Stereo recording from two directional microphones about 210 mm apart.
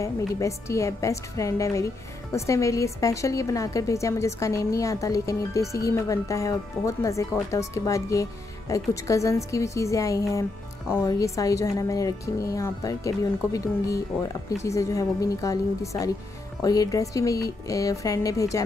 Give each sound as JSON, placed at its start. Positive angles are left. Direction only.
{"t": 0.0, "sound": "a woman's voice", "side_deg": 15}